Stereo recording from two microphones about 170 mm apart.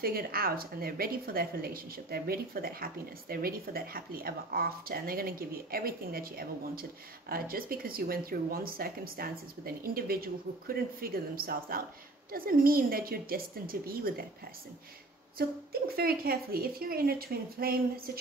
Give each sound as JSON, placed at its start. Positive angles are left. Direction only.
{"t": 0.0, "sound": "a woman's voice", "side_deg": -60}
{"t": 15.3, "sound": "a woman's voice", "side_deg": -65}